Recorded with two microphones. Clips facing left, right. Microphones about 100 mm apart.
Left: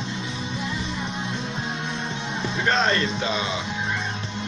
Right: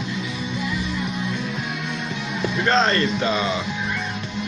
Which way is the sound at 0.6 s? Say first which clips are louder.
Right 4 dB; 30° left (ahead or behind).